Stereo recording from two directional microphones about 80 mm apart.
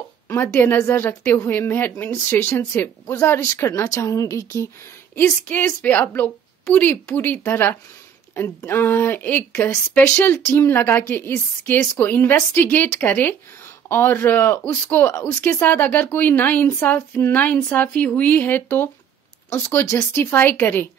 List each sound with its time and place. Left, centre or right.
0.3 s a woman's voice: left
5.1 s a woman's voice: left
10.4 s a woman's voice: left
15.6 s a woman's voice: left
20.3 s a woman's voice: left